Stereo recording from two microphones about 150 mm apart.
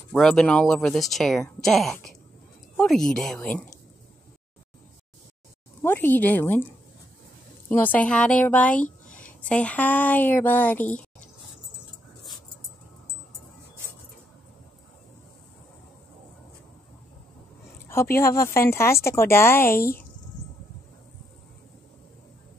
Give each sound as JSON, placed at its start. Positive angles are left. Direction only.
{"t": 0.1, "sound": "speech", "side_deg": 5}
{"t": 5.8, "sound": "a woman's voice", "side_deg": 15}
{"t": 7.6, "sound": "a woman's voice", "side_deg": 15}
{"t": 8.8, "sound": "a sound", "side_deg": 60}
{"t": 9.5, "sound": "a woman's voice", "side_deg": 10}
{"t": 18.1, "sound": "a woman's voice", "side_deg": 20}